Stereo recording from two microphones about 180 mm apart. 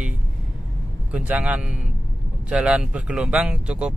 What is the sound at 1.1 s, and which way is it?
Speech, 10° right (ahead or behind).